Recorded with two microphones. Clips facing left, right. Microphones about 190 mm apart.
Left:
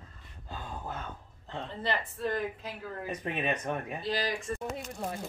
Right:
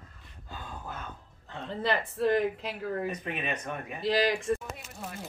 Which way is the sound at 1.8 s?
90° right.